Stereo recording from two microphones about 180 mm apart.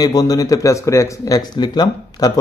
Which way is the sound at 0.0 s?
20° left (ahead or behind).